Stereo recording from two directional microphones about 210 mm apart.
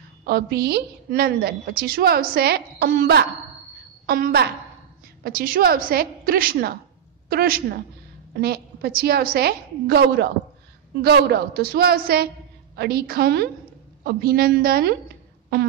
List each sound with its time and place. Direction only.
0.2 s a woman's voice: 50° right (ahead or behind)